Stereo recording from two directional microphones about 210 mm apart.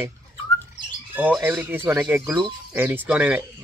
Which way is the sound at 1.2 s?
10° right (ahead or behind).